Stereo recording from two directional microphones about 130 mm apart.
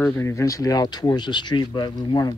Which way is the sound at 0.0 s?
20° left (ahead or behind).